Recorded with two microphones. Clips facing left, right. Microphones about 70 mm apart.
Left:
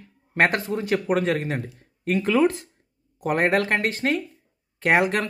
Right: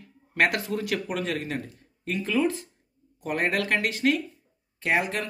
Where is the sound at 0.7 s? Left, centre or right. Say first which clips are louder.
Left 4 dB; left.